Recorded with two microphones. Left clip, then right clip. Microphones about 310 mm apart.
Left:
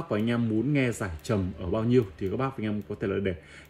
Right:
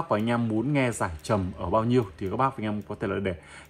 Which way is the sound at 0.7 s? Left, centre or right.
Centre.